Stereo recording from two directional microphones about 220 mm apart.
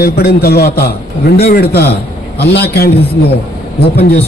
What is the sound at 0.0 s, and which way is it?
A man's voice, 45° left (ahead or behind).